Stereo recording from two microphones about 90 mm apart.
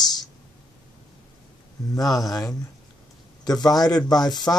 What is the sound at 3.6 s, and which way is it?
Speech, 45° left (ahead or behind).